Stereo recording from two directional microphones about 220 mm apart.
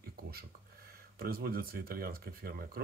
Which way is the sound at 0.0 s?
45° right (ahead or behind).